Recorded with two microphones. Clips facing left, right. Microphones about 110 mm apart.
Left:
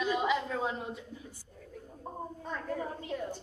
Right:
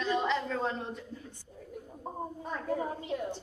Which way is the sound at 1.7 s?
15° right (ahead or behind).